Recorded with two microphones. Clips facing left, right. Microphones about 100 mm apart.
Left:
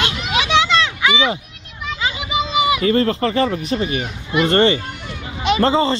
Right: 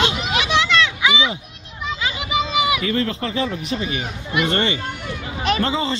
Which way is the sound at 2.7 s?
40° left (ahead or behind).